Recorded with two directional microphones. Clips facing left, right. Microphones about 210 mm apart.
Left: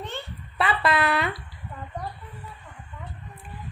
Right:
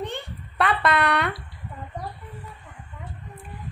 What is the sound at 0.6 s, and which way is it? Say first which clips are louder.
Speech: right 1 dB; 5° left (ahead or behind).